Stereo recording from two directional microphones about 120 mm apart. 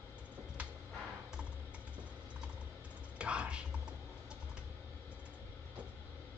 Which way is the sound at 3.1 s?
10° right (ahead or behind).